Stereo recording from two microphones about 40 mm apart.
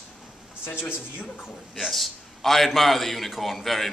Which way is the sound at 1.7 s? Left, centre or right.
Centre.